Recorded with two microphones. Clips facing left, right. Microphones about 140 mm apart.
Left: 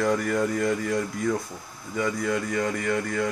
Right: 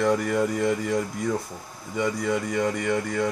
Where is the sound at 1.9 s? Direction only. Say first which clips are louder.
Right 1 dB; 5° right (ahead or behind).